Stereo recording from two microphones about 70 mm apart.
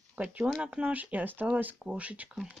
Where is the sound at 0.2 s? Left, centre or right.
Right.